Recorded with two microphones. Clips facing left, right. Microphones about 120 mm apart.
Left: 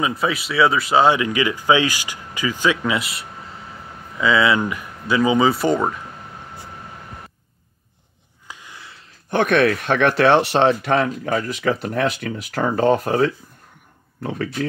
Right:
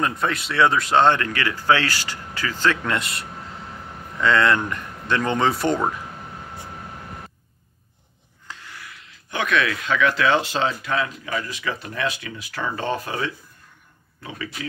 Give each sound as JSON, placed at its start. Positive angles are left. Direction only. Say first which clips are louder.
{"t": 0.0, "sound": "speech", "louder": "left 2 dB", "side_deg": 5}
{"t": 8.5, "sound": "a sound", "louder": "even", "side_deg": 15}
{"t": 9.3, "sound": "speech", "louder": "left 6 dB", "side_deg": 55}